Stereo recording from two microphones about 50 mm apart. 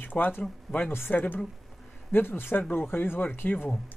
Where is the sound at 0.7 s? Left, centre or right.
Centre.